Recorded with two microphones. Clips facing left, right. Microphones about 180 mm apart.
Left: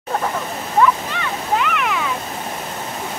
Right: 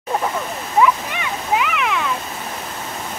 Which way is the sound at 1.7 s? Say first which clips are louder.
Even; centre (ahead or behind).